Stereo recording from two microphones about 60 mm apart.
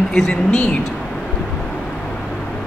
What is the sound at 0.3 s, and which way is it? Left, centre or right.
Speech, centre.